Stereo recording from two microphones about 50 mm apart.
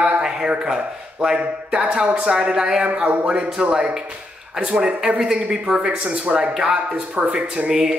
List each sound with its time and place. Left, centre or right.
0.0 s a sound: centre
1.2 s speech: centre
2.9 s speech: right